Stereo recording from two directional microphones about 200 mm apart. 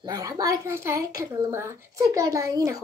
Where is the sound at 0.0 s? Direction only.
20° right (ahead or behind).